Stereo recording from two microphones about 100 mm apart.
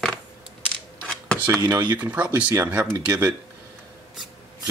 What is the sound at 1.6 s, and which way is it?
Speech, 45° right (ahead or behind).